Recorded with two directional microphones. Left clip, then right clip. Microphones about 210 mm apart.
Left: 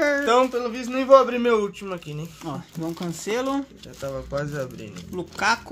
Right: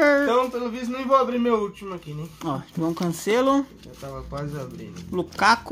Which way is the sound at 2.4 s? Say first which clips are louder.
Right 5 dB; 20° right (ahead or behind).